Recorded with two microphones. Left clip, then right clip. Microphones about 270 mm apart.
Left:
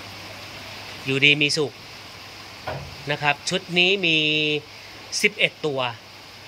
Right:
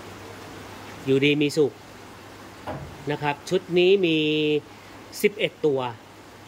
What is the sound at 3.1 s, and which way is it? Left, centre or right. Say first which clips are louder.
Speech: left 3 dB; centre.